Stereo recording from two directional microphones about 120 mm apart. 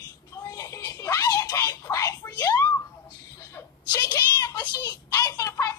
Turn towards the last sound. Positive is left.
turn(degrees=25)  # may be behind; listen again after turning